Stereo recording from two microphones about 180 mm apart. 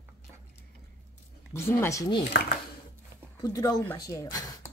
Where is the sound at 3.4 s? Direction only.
20° left (ahead or behind).